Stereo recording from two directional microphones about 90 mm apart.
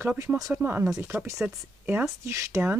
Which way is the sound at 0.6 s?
20° right (ahead or behind).